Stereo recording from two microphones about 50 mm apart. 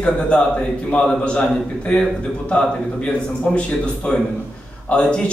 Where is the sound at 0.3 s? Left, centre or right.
Left.